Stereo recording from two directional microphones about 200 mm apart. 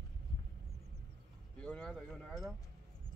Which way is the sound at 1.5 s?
5° left (ahead or behind).